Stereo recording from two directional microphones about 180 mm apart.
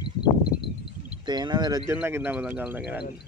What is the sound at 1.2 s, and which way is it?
Speech, 25° right (ahead or behind).